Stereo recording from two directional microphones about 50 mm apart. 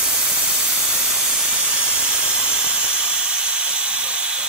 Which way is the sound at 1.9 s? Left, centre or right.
Centre.